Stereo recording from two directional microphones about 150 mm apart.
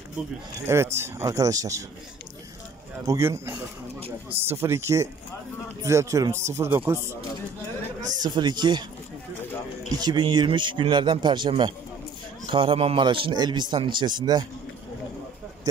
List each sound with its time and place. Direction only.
0.7 s speech: 20° right (ahead or behind)
3.1 s speech: 15° right (ahead or behind)
8.2 s speech: 30° right (ahead or behind)
9.9 s speech: 30° right (ahead or behind)